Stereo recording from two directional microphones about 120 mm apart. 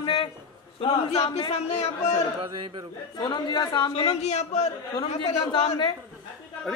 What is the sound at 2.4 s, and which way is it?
Music, 45° right (ahead or behind).